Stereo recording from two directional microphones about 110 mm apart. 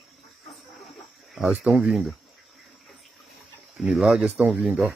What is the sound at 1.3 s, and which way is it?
Speech, 5° right (ahead or behind).